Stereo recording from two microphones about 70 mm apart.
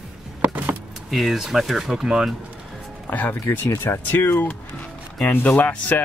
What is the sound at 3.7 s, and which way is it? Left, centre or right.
Speech, left.